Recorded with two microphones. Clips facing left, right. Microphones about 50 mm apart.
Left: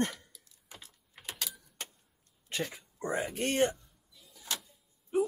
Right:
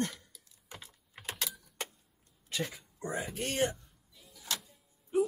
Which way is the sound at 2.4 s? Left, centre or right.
Left.